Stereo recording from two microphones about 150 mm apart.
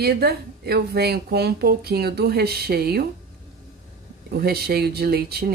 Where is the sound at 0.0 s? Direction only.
90° right.